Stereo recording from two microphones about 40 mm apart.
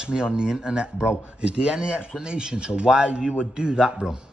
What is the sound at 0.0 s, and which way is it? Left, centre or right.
Speech, right.